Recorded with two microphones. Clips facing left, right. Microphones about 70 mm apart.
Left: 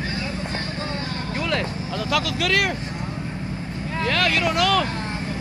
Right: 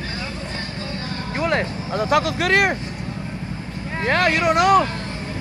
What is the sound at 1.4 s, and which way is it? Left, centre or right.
Speech, right.